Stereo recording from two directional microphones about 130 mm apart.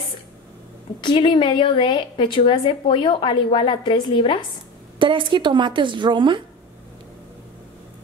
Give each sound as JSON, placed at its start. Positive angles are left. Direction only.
{"t": 1.0, "sound": "a woman's voice", "side_deg": 40}
{"t": 4.9, "sound": "speech", "side_deg": -40}